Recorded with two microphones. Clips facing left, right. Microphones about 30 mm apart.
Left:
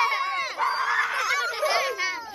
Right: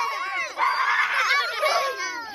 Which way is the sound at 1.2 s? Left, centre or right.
Right.